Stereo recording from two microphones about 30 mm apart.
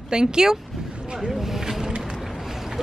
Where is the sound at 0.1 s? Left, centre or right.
Right.